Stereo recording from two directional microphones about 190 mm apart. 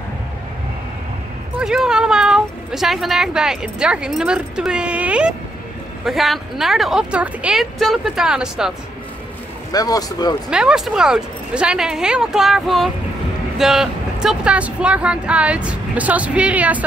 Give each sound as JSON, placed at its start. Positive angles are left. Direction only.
{"t": 1.6, "sound": "a woman's voice", "side_deg": -5}
{"t": 9.7, "sound": "speech", "side_deg": 20}
{"t": 10.5, "sound": "a woman's voice", "side_deg": -5}